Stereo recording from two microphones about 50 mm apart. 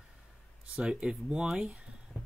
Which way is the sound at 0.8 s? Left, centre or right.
Centre.